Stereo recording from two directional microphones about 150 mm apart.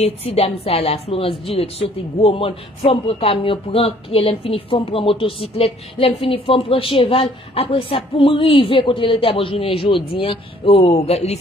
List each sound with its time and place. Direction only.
0.0 s a woman's voice: 40° left (ahead or behind)